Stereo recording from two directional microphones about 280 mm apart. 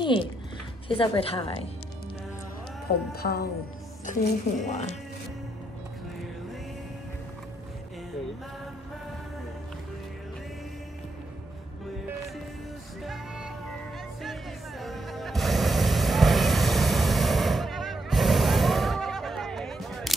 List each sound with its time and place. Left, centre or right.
0.0 s a woman's voice: centre
2.9 s a woman's voice: left
13.0 s music: centre
14.8 s music: centre